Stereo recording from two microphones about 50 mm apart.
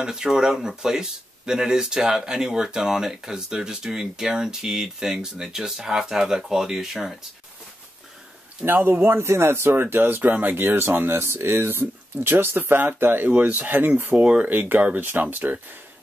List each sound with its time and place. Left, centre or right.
0.0 s speech: centre
8.6 s speech: right
9.0 s speech: right
13.3 s speech: right
14.1 s speech: right
14.5 s speech: right